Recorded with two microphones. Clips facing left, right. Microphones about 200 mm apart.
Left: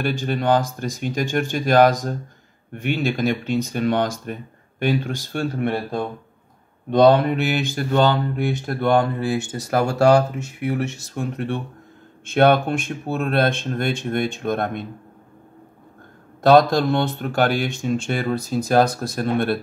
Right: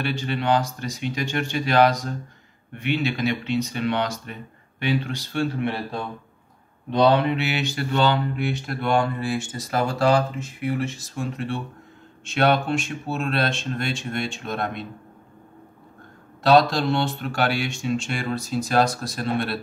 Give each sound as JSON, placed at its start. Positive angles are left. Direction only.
{"t": 0.0, "sound": "speech", "side_deg": 45}
{"t": 6.9, "sound": "speech", "side_deg": 45}
{"t": 9.5, "sound": "speech", "side_deg": 65}
{"t": 16.4, "sound": "speech", "side_deg": 50}